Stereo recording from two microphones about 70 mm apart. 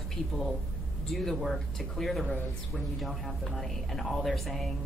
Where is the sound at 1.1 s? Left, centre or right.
Centre.